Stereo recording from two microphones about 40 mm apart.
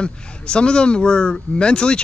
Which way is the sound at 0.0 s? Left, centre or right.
Left.